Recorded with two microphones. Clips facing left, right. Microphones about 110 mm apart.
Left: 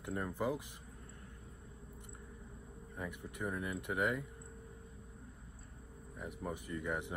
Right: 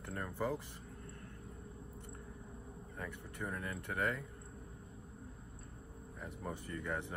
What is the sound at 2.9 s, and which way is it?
Speech, 15° left (ahead or behind).